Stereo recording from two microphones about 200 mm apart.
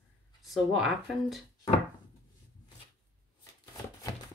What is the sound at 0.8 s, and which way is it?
Speech, centre (ahead or behind).